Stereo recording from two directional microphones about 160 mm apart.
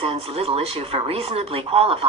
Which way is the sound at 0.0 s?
40° right (ahead or behind).